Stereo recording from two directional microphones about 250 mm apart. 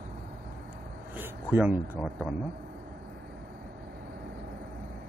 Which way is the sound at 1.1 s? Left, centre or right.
Centre.